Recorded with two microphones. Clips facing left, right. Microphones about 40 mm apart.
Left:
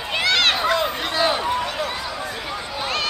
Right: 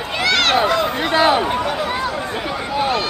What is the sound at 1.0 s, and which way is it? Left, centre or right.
Run, right.